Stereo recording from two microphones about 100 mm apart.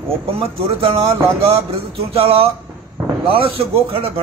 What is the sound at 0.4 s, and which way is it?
Speech, 70° right (ahead or behind).